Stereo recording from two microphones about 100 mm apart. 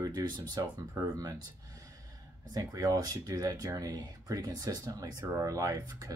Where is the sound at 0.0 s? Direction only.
40° right (ahead or behind).